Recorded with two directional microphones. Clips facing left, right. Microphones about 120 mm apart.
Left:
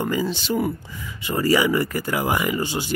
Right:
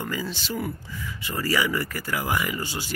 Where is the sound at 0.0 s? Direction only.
20° left (ahead or behind).